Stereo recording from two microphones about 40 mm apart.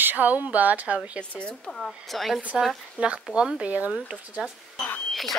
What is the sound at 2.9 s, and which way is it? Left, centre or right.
Speech, right.